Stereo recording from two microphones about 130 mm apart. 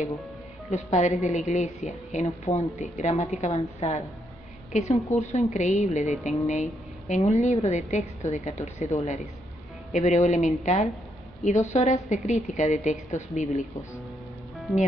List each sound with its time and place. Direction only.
0.7 s a woman's voice: 60° left (ahead or behind)